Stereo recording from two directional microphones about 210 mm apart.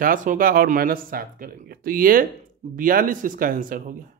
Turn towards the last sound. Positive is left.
turn(degrees=-40)  # may be behind; listen again after turning